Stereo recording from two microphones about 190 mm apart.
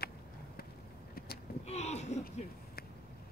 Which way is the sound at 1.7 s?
35° left (ahead or behind).